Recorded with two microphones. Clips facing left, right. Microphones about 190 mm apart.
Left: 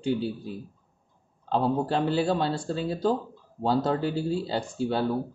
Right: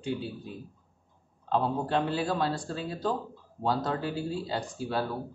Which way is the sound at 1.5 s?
30° left (ahead or behind).